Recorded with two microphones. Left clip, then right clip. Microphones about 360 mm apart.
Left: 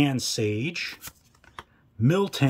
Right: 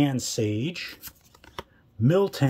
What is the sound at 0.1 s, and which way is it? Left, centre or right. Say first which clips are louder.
Speech: left 1 dB; centre.